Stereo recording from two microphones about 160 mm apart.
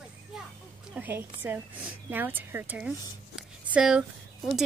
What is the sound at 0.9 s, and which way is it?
Speech, 10° right (ahead or behind).